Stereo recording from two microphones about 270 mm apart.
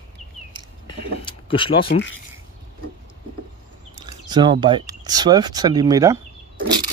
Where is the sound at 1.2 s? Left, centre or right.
Centre.